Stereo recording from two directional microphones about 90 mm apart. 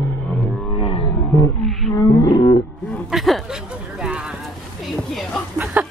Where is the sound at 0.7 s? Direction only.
70° left (ahead or behind).